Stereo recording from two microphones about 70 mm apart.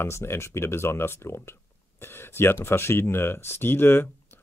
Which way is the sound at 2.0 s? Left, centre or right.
Left.